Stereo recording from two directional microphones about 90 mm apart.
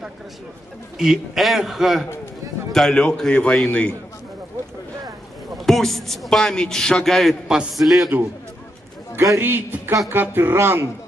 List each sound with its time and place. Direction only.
0.9 s a man's voice: 5° right (ahead or behind); by 3.9 s 15° left (ahead or behind)
5.7 s a man's voice: 5° left (ahead or behind)
9.1 s a man's voice: 30° right (ahead or behind)